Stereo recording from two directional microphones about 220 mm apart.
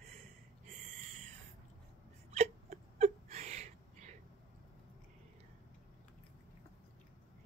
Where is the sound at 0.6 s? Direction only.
35° right (ahead or behind).